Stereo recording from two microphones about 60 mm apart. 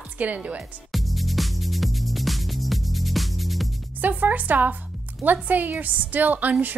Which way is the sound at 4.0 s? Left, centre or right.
Right.